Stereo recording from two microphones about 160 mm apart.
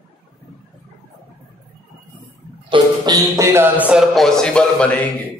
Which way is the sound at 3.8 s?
Centre (ahead or behind).